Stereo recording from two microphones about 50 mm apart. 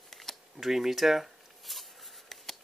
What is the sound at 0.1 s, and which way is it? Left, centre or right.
Camera, centre.